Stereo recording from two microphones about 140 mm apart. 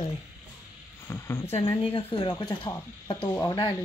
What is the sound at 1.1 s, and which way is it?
Speech, 15° left (ahead or behind).